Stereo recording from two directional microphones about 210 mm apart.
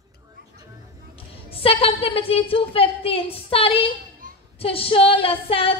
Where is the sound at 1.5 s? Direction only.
25° left (ahead or behind).